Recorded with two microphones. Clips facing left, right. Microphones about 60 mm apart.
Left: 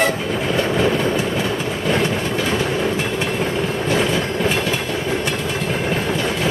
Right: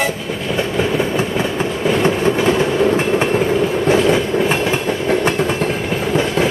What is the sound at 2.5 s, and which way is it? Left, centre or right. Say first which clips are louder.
Train: right 5 dB; right.